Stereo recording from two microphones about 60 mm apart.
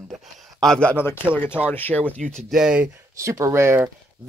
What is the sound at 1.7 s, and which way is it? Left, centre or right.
Speech, left.